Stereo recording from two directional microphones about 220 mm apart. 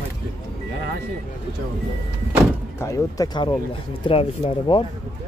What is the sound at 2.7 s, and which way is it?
Speech, 15° left (ahead or behind).